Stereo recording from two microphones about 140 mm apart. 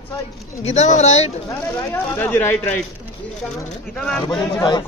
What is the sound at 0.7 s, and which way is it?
Speech, 55° left (ahead or behind).